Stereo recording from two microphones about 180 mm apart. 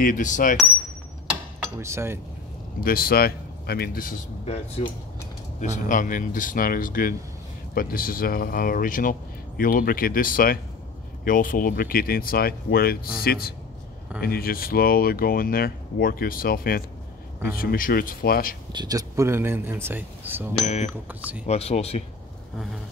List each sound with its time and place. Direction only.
0.0 s speech: 45° left (ahead or behind)
1.8 s speech: 15° right (ahead or behind)
2.8 s speech: 55° left (ahead or behind)
4.5 s speech: 35° left (ahead or behind)
5.6 s speech: 45° left (ahead or behind)
18.7 s speech: 20° right (ahead or behind)
20.6 s speech: 40° left (ahead or behind)
21.1 s speech: 10° right (ahead or behind)
21.5 s speech: 35° left (ahead or behind)